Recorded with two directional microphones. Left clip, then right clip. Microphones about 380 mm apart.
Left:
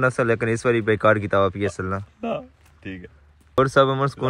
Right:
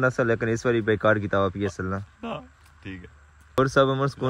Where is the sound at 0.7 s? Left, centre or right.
Left.